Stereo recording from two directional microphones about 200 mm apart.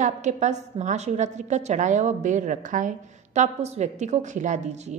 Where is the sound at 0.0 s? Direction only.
35° right (ahead or behind).